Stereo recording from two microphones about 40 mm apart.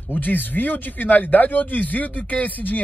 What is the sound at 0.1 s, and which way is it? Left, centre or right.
Speech, left.